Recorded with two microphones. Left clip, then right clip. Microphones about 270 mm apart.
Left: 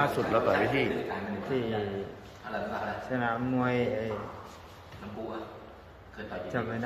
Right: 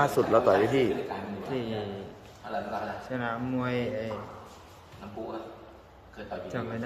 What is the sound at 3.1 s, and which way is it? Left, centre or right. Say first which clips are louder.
Speech: left 4 dB; centre.